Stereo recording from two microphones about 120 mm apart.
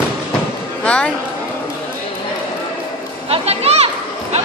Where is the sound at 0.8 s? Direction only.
10° left (ahead or behind).